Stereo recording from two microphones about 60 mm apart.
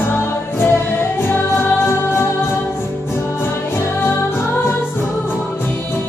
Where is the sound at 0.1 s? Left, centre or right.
Left.